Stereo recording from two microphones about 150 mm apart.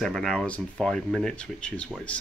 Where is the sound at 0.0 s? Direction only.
5° left (ahead or behind).